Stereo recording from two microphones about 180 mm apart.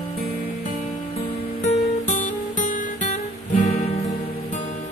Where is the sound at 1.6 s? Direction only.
40° left (ahead or behind).